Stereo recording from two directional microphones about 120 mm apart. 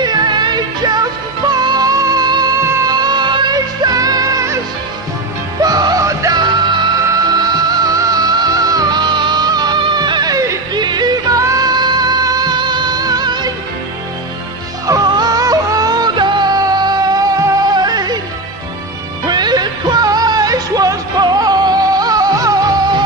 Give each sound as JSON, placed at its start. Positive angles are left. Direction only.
{"t": 0.0, "sound": "music", "side_deg": -35}
{"t": 5.6, "sound": "music", "side_deg": -30}
{"t": 14.9, "sound": "music", "side_deg": -30}
{"t": 19.2, "sound": "music", "side_deg": -35}